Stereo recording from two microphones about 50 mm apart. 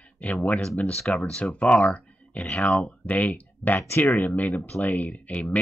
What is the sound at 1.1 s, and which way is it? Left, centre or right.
Speech, centre.